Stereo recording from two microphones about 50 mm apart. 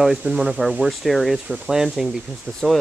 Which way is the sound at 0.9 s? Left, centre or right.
Centre.